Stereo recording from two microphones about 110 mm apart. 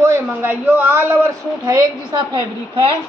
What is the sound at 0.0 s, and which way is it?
A man's voice, 20° right (ahead or behind).